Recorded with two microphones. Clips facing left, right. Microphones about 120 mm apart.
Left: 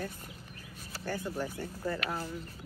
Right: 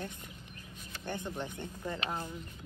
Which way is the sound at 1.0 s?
20° right (ahead or behind).